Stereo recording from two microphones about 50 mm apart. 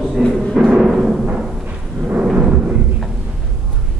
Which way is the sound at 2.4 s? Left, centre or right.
Centre.